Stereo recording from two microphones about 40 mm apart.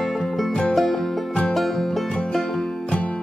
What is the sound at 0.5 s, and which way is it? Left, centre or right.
Music, centre.